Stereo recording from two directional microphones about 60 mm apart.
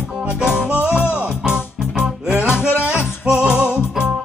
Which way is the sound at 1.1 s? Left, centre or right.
Centre.